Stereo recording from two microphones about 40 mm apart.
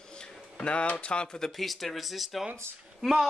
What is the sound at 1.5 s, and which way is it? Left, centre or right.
Speech, centre.